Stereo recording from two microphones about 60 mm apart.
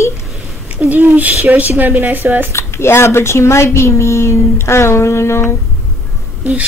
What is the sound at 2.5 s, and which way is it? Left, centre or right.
Speech, left.